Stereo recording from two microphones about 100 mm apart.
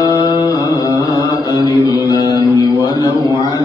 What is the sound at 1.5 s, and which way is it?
Mantra, 40° left (ahead or behind).